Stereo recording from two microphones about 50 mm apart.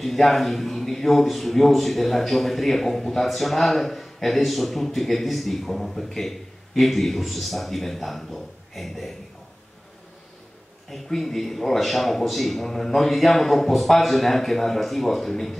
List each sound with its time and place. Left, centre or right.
0.0 s a man's voice: centre
10.9 s a man's voice: centre